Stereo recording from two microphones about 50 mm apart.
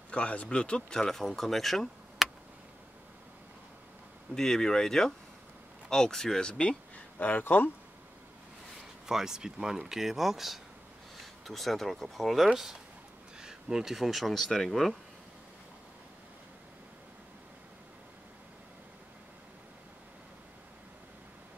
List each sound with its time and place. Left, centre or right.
0.1 s speech: left; by 2.2 s centre
4.4 s speech: centre
7.2 s speech: left
9.0 s speech: centre
13.4 s speech: centre